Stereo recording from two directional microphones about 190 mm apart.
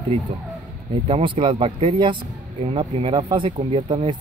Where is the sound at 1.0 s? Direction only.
25° right (ahead or behind).